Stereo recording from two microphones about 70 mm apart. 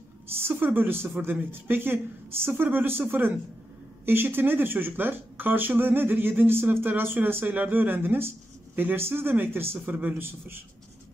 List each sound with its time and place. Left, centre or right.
0.5 s speech: right